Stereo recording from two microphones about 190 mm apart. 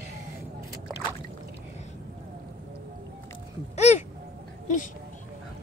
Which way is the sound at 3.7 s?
35° left (ahead or behind).